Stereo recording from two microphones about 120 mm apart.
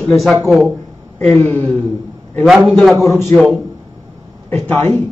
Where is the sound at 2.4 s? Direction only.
Centre (ahead or behind).